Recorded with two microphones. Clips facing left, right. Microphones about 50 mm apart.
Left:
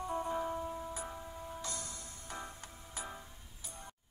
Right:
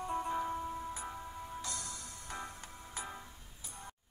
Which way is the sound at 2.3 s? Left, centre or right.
Right.